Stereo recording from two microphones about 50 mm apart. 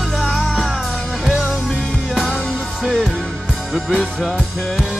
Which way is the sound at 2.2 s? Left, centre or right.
Left.